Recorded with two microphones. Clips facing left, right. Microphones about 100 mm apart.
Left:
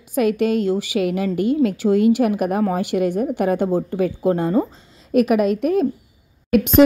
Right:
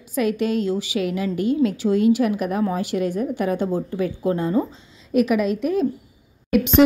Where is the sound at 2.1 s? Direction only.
55° left (ahead or behind).